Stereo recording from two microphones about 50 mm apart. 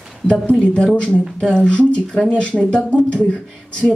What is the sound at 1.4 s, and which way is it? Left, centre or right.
A woman's voice, centre.